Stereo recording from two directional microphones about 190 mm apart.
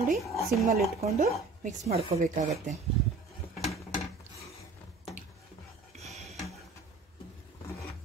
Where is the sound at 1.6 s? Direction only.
40° right (ahead or behind).